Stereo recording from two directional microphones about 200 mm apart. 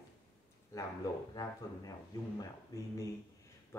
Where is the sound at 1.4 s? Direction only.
20° left (ahead or behind).